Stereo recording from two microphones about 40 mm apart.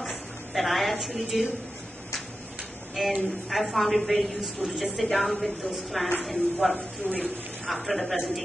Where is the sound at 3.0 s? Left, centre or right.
Centre.